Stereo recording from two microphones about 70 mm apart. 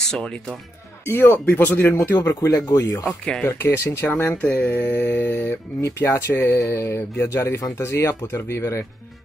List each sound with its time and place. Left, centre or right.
0.0 s speech: centre
1.0 s speech: left
2.0 s speech: left
3.1 s speech: centre
3.4 s speech: left
4.2 s speech: left
5.8 s speech: left
6.6 s mantra: left
7.3 s speech: left